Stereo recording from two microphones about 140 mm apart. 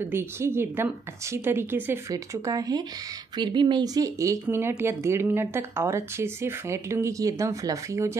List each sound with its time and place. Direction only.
0.0 s a woman's voice: 15° right (ahead or behind)